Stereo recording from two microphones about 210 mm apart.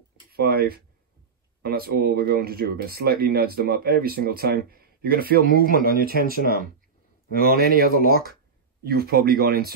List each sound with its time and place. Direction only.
0.3 s speech: 45° right (ahead or behind)